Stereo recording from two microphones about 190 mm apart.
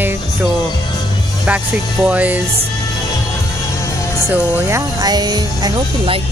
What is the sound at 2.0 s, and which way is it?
Speech, 5° right (ahead or behind).